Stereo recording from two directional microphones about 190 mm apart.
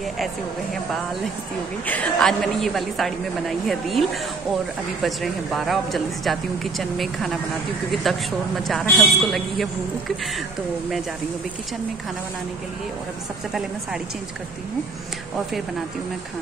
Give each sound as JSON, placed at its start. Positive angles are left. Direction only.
{"t": 1.9, "sound": "a woman's voice", "side_deg": 5}